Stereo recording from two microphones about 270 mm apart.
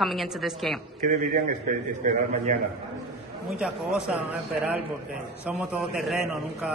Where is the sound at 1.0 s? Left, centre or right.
Right.